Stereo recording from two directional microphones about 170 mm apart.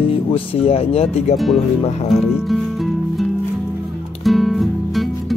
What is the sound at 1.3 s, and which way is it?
Speech, centre (ahead or behind).